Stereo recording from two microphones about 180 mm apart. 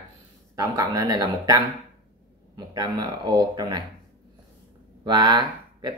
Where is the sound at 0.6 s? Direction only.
20° right (ahead or behind).